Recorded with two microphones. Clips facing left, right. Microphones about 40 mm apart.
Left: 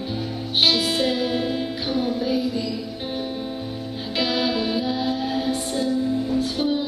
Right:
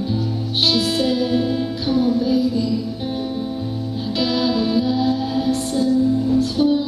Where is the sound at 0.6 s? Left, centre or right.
Centre.